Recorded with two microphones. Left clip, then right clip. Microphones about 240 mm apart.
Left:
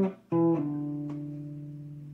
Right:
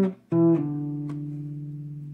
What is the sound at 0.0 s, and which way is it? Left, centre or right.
Music, right.